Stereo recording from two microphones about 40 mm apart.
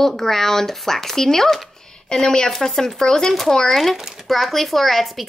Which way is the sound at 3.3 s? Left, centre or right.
Centre.